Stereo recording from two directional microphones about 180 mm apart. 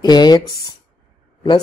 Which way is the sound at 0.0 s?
25° left (ahead or behind).